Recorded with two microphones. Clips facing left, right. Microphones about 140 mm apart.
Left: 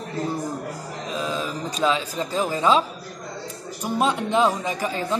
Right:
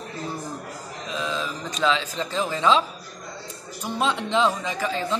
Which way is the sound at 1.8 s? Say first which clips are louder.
Left 1 dB; 10° left (ahead or behind).